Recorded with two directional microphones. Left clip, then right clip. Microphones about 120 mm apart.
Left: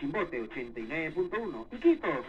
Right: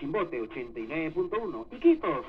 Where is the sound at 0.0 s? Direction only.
40° right (ahead or behind).